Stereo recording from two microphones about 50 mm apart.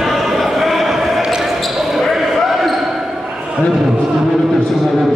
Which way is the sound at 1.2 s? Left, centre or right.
Centre.